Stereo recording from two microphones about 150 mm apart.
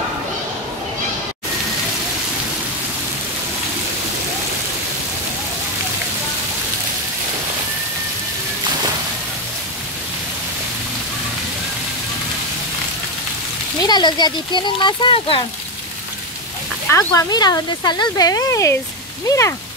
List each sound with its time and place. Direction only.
13.8 s speech: 30° left (ahead or behind)
16.9 s speech: 25° left (ahead or behind)